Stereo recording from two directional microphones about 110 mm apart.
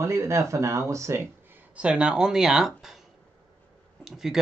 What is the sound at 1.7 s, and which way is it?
Speech, 10° right (ahead or behind).